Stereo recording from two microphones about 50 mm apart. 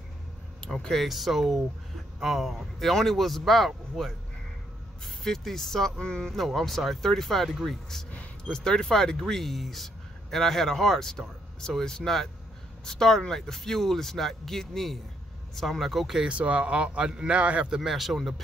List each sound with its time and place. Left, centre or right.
0.9 s speech: centre
6.3 s speech: centre
16.2 s a man's voice: right
17.6 s speech: centre